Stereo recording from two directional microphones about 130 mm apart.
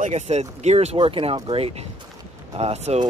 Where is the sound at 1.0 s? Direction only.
45° right (ahead or behind).